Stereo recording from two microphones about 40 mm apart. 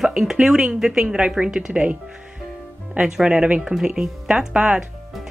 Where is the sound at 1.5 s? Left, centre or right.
Right.